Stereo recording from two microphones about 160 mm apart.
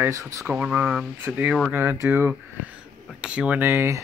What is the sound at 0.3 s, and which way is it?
Speech, 20° right (ahead or behind).